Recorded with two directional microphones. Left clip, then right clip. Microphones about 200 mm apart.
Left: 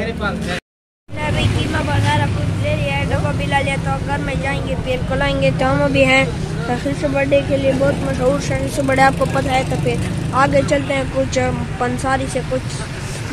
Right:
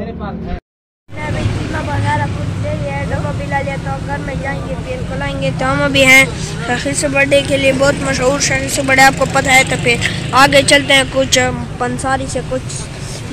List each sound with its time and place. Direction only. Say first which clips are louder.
1.7 s speech: right 3 dB; centre (ahead or behind)
5.4 s speech: right 4 dB; 5° left (ahead or behind)